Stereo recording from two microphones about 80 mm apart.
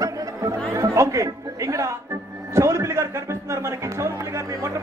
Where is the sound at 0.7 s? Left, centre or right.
Right.